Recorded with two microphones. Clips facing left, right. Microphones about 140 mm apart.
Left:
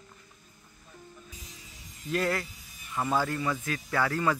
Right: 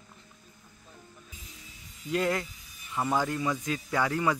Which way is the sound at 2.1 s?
20° right (ahead or behind).